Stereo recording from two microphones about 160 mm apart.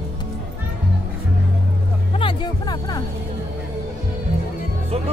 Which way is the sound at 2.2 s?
30° left (ahead or behind).